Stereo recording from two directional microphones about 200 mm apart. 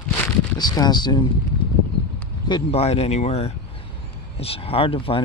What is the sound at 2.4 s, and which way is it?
Speech, 25° left (ahead or behind).